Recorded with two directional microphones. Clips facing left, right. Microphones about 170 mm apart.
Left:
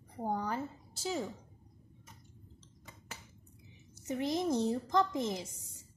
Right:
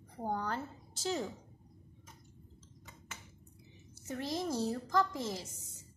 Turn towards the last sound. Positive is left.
turn(degrees=20)  # may be behind; listen again after turning